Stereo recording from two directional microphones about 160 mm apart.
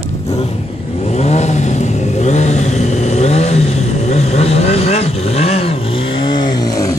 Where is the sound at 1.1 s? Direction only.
45° left (ahead or behind).